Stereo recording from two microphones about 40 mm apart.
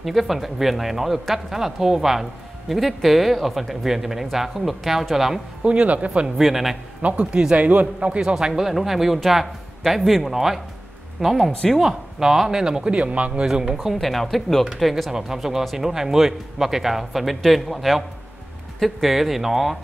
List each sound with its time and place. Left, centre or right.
0.0 s speech: centre
5.6 s speech: right
6.2 s speech: centre
7.0 s a man's voice: right
8.2 s speech: centre
13.0 s a man's voice: right
13.5 s speech: centre
13.9 s speech: centre
15.0 s speech: centre